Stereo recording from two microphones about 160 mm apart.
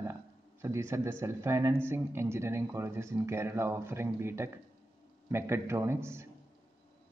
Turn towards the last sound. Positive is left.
turn(degrees=-15)  # may be behind; listen again after turning